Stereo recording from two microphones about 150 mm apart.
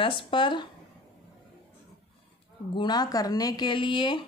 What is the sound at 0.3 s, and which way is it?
Speech, 30° left (ahead or behind).